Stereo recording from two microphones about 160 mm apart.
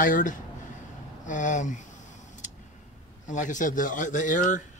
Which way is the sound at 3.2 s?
50° left (ahead or behind).